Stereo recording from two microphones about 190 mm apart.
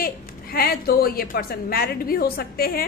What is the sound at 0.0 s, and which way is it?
A woman's voice, 50° left (ahead or behind).